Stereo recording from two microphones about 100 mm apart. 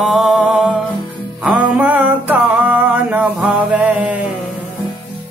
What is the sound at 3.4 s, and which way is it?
Music, 15° right (ahead or behind).